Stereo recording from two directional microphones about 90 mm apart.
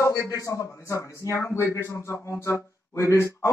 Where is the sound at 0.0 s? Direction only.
35° left (ahead or behind).